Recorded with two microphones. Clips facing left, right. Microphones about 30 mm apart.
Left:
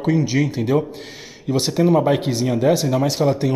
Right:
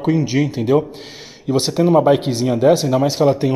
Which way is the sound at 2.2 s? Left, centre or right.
Centre.